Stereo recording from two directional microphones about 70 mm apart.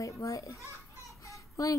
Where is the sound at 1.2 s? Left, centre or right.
Left.